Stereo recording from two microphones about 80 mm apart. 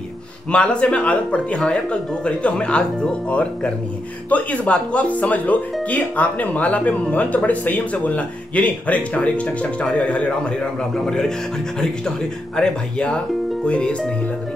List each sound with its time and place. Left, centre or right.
0.5 s speech: centre
12.5 s speech: centre